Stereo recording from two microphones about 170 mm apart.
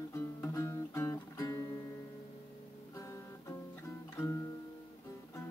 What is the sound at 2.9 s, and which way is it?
Guitar, 15° left (ahead or behind).